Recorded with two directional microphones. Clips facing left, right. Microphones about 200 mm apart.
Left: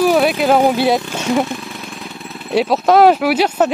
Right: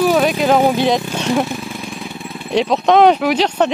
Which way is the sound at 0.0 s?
10° left (ahead or behind).